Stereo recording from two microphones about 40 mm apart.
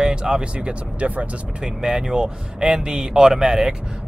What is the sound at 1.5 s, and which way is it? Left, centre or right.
Speech, centre.